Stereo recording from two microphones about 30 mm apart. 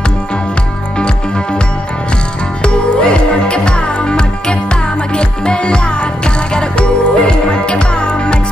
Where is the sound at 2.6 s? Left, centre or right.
Left.